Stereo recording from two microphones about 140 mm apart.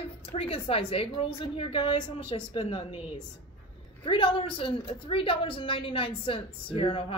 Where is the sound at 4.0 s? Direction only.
35° left (ahead or behind).